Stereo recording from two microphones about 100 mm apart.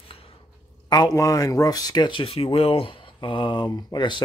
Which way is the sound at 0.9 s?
40° left (ahead or behind).